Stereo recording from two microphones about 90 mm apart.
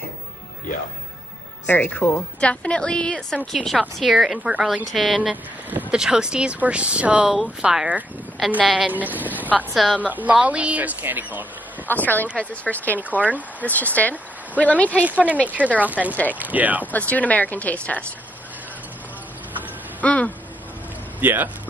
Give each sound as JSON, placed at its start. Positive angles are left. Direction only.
{"t": 1.7, "sound": "a woman's voice", "side_deg": 15}
{"t": 5.3, "sound": "a woman's voice", "side_deg": -15}
{"t": 8.9, "sound": "speech", "side_deg": -20}
{"t": 11.9, "sound": "speech", "side_deg": 20}
{"t": 15.0, "sound": "speech", "side_deg": -15}
{"t": 16.8, "sound": "speech", "side_deg": 20}
{"t": 20.0, "sound": "speech", "side_deg": 15}
{"t": 21.2, "sound": "speech", "side_deg": -20}